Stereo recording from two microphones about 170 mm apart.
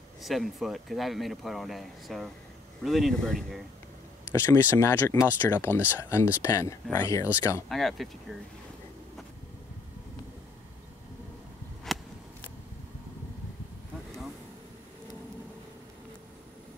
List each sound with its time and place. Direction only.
0.2 s speech: centre (ahead or behind)
4.3 s speech: 15° left (ahead or behind)
7.7 s speech: centre (ahead or behind)